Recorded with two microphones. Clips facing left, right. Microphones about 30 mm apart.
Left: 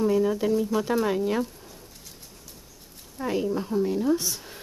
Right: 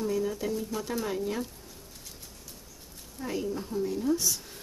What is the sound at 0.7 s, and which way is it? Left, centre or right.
Speech, left.